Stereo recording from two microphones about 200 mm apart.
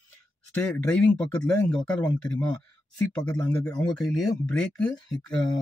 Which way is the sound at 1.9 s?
20° left (ahead or behind).